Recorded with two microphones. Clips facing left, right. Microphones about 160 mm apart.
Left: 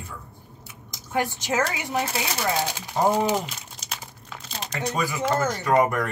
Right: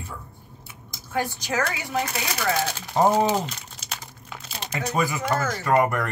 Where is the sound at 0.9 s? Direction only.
20° left (ahead or behind).